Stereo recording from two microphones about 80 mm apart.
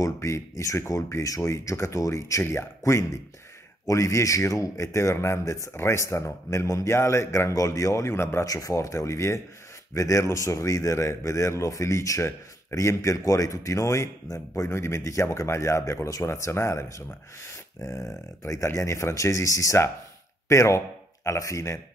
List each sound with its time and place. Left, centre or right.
0.0 s speech: left
8.5 s speech: left
17.5 s a sound: left
18.4 s speech: left